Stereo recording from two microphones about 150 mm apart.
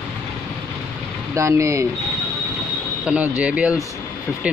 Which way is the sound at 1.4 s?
20° right (ahead or behind).